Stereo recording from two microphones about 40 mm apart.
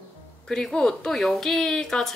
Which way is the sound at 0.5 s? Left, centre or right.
Centre.